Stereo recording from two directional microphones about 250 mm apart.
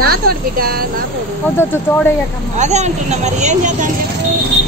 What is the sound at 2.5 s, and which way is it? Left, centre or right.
Speech, right.